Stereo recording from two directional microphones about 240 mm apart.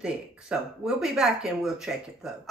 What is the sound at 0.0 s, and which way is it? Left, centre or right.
Speech, centre.